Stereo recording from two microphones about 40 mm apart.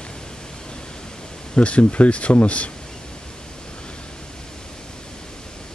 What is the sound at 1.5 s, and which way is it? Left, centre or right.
Speech, left.